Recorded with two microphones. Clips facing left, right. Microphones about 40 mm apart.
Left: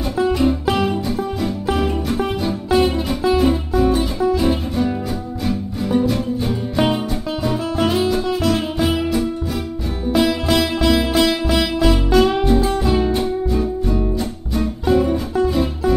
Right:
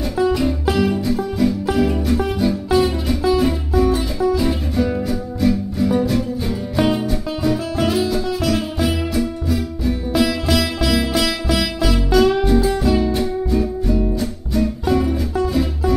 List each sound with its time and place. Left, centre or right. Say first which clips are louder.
0.2 s music: left 1 dB; centre